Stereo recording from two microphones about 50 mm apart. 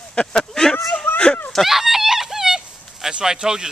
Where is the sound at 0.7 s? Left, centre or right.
Left.